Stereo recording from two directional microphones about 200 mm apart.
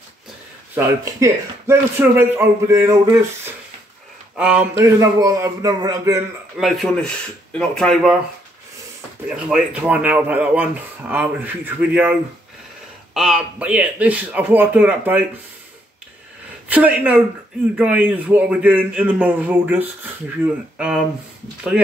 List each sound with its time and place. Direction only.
0.7 s a man's voice: 10° right (ahead or behind)
6.6 s speech: centre (ahead or behind)
9.3 s a man's voice: 5° right (ahead or behind)
16.6 s a man's voice: 10° right (ahead or behind)